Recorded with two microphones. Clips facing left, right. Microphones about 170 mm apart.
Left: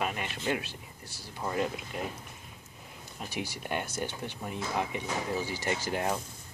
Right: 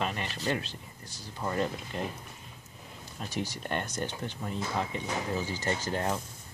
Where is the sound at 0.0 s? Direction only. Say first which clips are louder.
Even; 10° left (ahead or behind).